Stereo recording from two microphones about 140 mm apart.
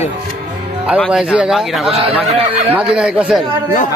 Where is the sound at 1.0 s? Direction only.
5° right (ahead or behind).